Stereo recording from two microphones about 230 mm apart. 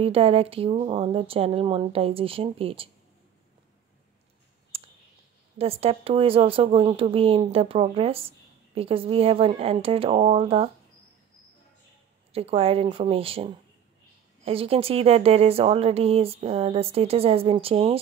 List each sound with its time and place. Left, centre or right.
0.0 s speech: right
4.7 s clicking: right
5.6 s speech: right
12.3 s speech: right